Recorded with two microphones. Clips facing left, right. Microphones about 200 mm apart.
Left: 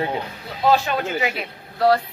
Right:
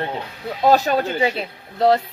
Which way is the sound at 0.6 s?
40° right (ahead or behind).